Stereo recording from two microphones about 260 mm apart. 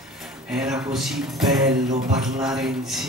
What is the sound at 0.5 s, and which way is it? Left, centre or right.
Speech, centre.